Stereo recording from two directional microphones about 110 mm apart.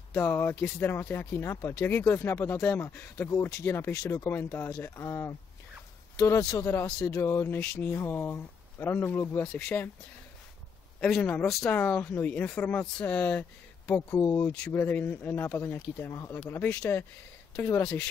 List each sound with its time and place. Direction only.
0.1 s speech: 20° left (ahead or behind)
3.3 s speech: 30° left (ahead or behind)
9.5 s speech: 5° left (ahead or behind)
11.0 s speech: centre (ahead or behind)
11.7 s speech: 15° left (ahead or behind)
14.1 s speech: 30° left (ahead or behind)
14.7 s speech: 20° left (ahead or behind)
16.6 s speech: 10° left (ahead or behind)
17.6 s speech: 25° left (ahead or behind)